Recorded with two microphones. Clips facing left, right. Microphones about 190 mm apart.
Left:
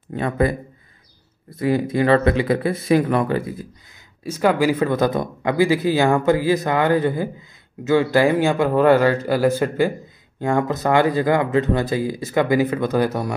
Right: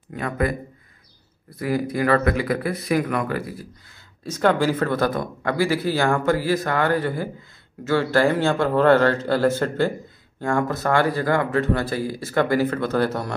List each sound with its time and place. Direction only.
0.1 s speech: 30° left (ahead or behind)
1.6 s speech: 25° left (ahead or behind)
4.2 s speech: 10° left (ahead or behind)